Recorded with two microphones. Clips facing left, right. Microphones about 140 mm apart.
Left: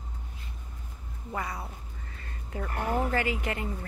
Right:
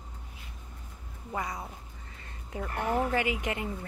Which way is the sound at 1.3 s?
20° right (ahead or behind).